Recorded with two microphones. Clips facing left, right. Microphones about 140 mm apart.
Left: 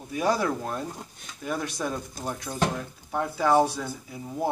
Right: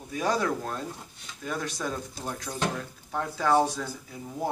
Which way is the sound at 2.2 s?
50° left (ahead or behind).